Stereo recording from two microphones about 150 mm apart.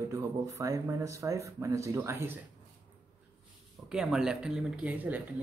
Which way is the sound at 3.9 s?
5° right (ahead or behind).